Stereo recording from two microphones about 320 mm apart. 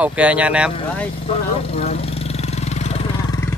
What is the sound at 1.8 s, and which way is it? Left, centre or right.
Vehicle, centre.